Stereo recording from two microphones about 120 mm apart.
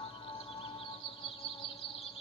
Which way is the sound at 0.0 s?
50° left (ahead or behind).